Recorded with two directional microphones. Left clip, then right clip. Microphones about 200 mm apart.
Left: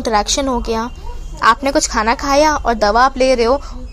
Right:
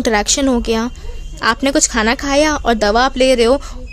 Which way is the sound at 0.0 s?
30° right (ahead or behind).